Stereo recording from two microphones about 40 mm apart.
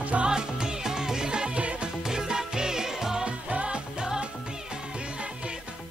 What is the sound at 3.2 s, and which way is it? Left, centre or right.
Music, right.